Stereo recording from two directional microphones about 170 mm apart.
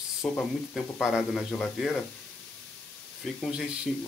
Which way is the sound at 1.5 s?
5° left (ahead or behind).